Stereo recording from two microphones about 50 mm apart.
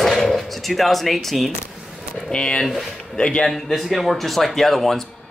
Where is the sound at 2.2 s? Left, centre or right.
Centre.